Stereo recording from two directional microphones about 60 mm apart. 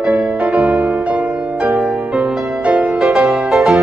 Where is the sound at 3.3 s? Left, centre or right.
Centre.